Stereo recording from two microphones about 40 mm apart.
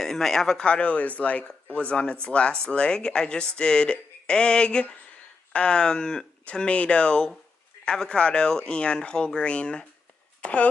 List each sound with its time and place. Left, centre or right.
0.0 s speech: centre
0.6 s speech: left
1.9 s speech: left